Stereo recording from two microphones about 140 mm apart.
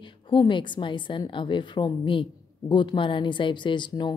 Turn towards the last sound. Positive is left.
turn(degrees=35)  # may be behind; listen again after turning